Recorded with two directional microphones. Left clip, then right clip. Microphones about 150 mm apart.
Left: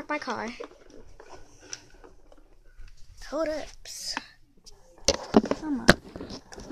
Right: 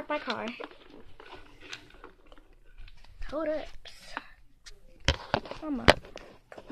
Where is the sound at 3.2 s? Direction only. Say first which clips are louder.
Left 2 dB; 40° left (ahead or behind).